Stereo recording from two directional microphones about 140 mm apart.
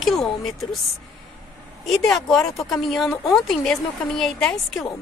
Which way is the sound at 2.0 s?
5° left (ahead or behind).